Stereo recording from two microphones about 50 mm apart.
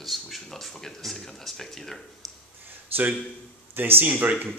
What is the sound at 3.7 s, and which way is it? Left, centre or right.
Speech, right.